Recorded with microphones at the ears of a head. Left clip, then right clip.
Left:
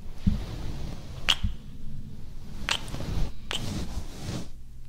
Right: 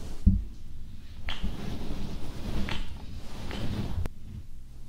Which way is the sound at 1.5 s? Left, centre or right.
Right.